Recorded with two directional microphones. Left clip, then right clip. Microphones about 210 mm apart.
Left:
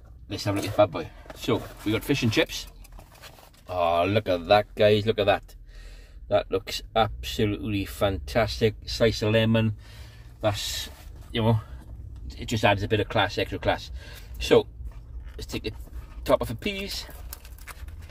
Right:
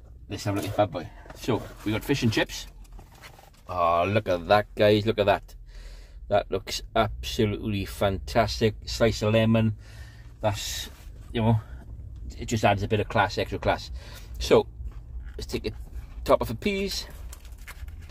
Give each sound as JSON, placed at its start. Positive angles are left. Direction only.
{"t": 0.3, "sound": "speech", "side_deg": 0}
{"t": 3.6, "sound": "speech", "side_deg": -10}
{"t": 11.3, "sound": "speech", "side_deg": 0}